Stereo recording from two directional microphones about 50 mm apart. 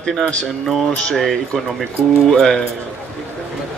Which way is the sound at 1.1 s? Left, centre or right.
Centre.